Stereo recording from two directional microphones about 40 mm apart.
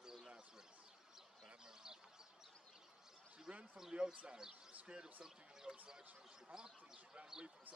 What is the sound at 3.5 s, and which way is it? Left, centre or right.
Speech, right.